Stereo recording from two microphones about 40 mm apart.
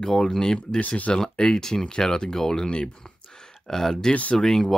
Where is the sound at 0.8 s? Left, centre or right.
Left.